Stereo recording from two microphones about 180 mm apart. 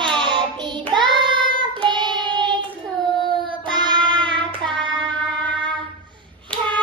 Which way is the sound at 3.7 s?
25° right (ahead or behind).